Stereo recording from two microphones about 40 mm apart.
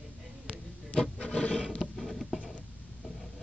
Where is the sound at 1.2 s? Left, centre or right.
Left.